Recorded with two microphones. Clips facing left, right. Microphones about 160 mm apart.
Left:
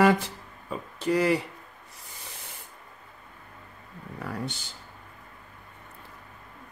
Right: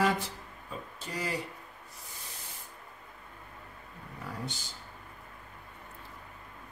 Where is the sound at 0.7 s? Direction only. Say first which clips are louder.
Left 14 dB; 70° left (ahead or behind).